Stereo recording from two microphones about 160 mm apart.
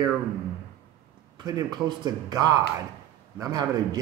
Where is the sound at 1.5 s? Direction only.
25° right (ahead or behind).